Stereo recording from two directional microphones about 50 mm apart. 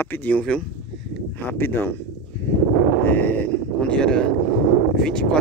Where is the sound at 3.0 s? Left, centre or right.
Left.